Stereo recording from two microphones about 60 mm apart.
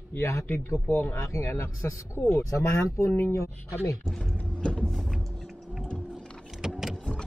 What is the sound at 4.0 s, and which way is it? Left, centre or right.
Speech, centre.